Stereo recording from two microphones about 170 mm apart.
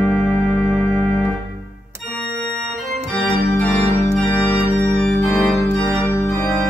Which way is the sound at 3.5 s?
10° left (ahead or behind).